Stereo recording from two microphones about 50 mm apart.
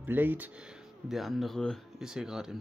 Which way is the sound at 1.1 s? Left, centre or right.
Centre.